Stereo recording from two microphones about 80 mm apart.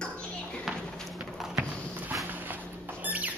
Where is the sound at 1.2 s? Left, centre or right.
Centre.